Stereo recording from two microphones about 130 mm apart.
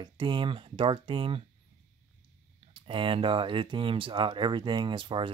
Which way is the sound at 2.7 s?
40° right (ahead or behind).